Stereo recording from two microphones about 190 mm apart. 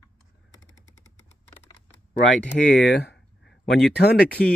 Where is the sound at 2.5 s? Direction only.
55° left (ahead or behind).